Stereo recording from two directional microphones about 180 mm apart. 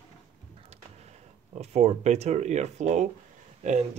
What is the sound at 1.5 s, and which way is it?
Speech, 40° right (ahead or behind).